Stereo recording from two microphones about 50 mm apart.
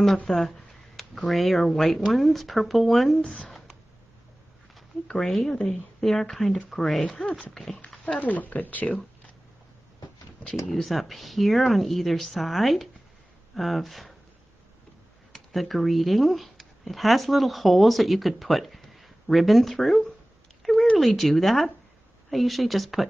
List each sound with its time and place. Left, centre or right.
0.3 s speech: centre
3.3 s a sound: centre
5.0 s speech: centre
7.2 s speech: centre
8.2 s speech: left
10.7 s speech: centre
15.3 s speech: centre
20.6 s a sound: centre
21.0 s speech: centre